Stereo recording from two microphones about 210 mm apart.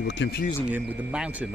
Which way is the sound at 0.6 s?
5° right (ahead or behind).